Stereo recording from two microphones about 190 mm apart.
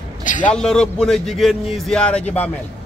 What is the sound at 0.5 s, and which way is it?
A man's voice, 5° left (ahead or behind).